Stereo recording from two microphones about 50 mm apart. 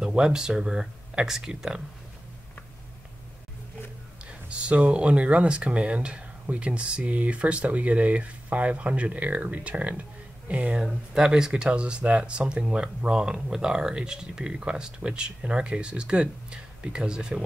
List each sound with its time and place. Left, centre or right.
0.0 s speech: centre
4.3 s speech: right
11.1 s speech: centre